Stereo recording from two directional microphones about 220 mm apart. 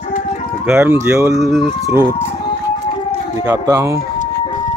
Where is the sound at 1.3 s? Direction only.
Centre (ahead or behind).